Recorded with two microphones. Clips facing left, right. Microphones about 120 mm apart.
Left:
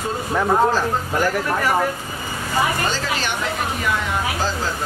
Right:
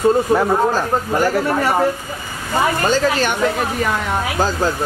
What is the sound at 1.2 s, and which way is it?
Speech, 25° right (ahead or behind).